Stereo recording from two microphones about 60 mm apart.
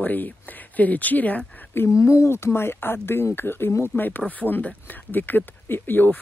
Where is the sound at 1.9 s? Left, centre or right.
Left.